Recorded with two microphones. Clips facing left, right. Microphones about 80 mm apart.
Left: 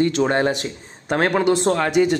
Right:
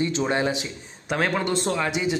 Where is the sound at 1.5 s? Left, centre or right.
Left.